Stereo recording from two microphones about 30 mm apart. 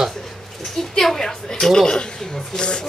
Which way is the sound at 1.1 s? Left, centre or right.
Centre.